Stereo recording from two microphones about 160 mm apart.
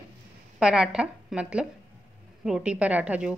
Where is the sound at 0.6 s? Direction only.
5° right (ahead or behind).